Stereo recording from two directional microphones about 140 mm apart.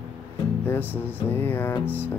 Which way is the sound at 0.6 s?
15° left (ahead or behind).